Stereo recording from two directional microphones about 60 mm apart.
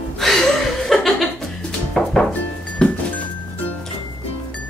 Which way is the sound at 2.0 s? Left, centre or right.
Centre.